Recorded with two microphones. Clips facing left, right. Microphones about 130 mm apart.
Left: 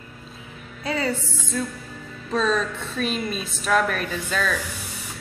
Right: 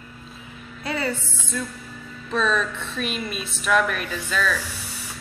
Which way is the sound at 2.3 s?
35° left (ahead or behind).